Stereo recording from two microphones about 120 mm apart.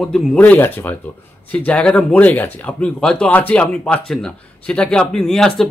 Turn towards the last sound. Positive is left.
turn(degrees=5)  # may be behind; listen again after turning